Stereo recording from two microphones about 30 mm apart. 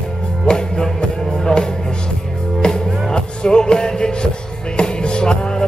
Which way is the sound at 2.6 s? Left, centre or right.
Left.